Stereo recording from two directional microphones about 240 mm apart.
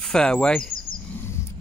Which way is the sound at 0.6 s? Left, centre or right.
Left.